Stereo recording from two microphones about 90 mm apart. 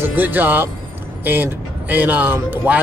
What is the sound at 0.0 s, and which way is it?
Speech, 20° right (ahead or behind).